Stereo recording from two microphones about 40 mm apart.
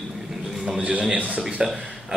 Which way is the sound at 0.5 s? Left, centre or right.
Centre.